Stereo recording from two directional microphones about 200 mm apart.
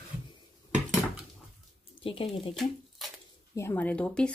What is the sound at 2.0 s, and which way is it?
Speech, 25° left (ahead or behind).